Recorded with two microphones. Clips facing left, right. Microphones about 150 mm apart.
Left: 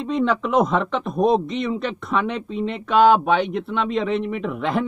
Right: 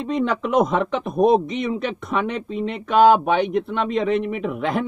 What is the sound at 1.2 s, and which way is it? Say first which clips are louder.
Speech: right 2 dB; 50° right (ahead or behind).